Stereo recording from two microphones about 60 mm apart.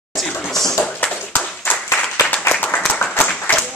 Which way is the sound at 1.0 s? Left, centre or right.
Left.